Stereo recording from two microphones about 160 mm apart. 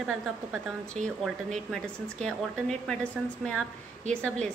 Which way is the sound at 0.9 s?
50° right (ahead or behind).